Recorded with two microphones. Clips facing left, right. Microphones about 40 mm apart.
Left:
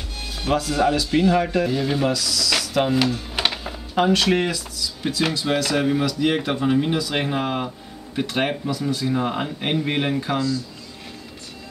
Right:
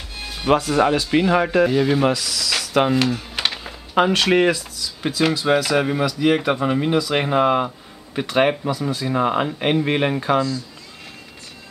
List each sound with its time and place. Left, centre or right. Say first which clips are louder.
0.2 s speech: right 4 dB; centre
1.7 s speech: right 4 dB; centre
2.0 s speech: right 2 dB; right
2.9 s a sound: right 1 dB; centre
3.9 s speech: right 2 dB; right
7.2 s speech: right 7 dB; right